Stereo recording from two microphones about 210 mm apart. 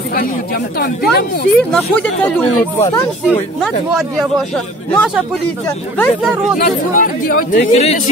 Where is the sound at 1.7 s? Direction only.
5° left (ahead or behind).